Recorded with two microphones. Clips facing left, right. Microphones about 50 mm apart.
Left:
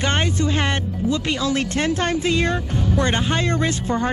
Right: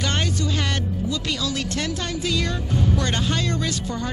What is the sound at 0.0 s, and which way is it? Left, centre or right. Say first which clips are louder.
Speech: left 4 dB; left.